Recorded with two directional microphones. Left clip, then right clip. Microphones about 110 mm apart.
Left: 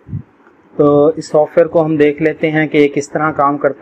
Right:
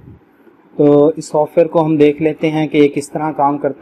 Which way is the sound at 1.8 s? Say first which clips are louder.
Right 1 dB; 15° right (ahead or behind).